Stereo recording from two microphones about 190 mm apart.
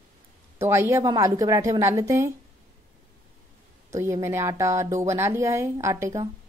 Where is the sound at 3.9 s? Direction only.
15° right (ahead or behind).